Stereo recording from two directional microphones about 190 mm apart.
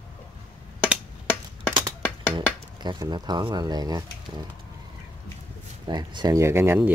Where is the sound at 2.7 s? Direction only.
25° right (ahead or behind).